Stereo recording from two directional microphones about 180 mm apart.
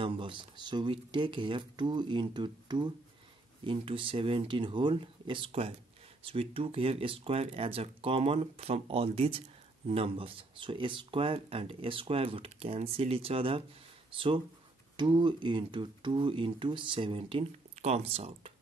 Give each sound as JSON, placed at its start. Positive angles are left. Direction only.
{"t": 0.0, "sound": "speech", "side_deg": -30}